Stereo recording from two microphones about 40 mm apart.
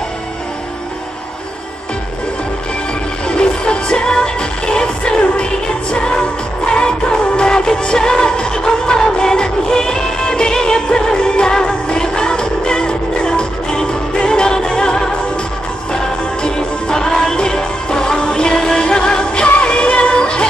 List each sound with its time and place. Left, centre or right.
3.3 s music: left
16.4 s music: centre